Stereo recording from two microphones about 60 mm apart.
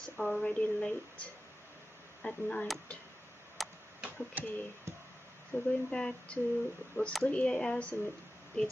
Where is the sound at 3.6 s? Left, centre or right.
Centre.